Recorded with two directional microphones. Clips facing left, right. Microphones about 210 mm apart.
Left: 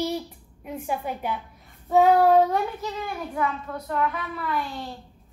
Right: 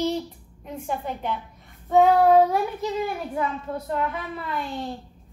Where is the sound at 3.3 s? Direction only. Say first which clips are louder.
Right 1 dB; 25° right (ahead or behind).